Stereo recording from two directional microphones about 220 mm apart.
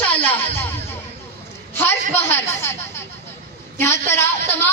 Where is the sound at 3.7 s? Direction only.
10° left (ahead or behind).